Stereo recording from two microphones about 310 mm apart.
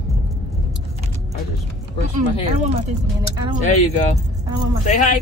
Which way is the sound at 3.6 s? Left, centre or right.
Left.